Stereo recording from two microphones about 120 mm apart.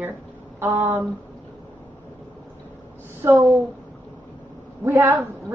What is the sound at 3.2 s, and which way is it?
Speech, 25° right (ahead or behind).